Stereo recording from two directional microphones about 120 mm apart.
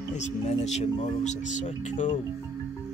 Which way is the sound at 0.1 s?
75° left (ahead or behind).